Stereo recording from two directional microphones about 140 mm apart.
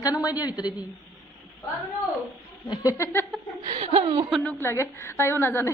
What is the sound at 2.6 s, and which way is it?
Speech, 25° left (ahead or behind).